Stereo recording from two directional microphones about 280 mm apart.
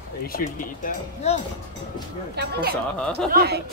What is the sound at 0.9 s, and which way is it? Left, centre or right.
Speech, left.